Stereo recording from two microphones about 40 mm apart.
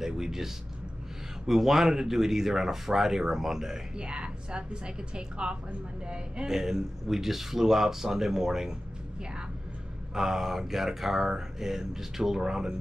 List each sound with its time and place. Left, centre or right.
0.0 s speech: centre
4.0 s a woman's voice: right
6.5 s speech: centre
10.1 s speech: centre